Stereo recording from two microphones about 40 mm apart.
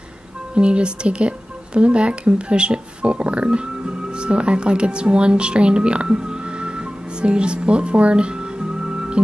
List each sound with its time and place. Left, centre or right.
0.6 s a woman's voice: right